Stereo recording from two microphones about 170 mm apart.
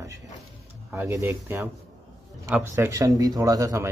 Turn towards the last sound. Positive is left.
turn(degrees=-20)  # may be behind; listen again after turning